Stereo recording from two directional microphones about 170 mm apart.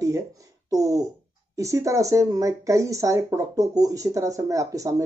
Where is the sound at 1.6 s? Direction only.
20° right (ahead or behind).